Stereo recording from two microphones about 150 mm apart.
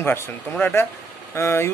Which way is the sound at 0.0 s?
15° left (ahead or behind).